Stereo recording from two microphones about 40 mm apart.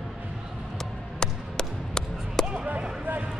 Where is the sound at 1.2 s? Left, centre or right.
Centre.